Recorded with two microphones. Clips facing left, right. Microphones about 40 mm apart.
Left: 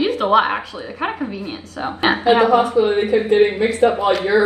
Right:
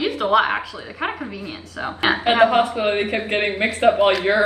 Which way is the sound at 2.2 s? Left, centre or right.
Right.